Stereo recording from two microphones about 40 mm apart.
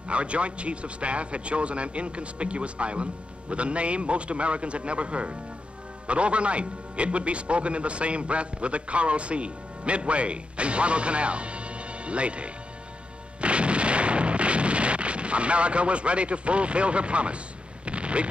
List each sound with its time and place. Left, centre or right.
0.1 s a man's voice: right
13.4 s artillery fire: right
17.8 s a sound: right